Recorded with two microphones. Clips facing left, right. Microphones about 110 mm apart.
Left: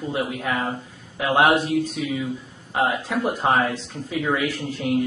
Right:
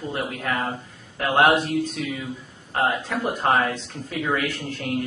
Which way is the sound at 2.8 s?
Centre (ahead or behind).